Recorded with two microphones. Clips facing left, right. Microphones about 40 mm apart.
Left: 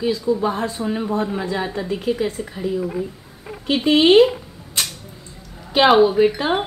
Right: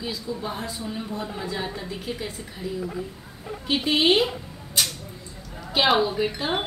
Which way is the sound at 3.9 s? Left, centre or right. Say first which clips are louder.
Left 9 dB; centre.